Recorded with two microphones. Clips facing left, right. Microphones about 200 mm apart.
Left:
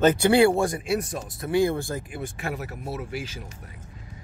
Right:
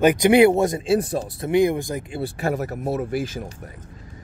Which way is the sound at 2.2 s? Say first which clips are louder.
Right 7 dB; 40° right (ahead or behind).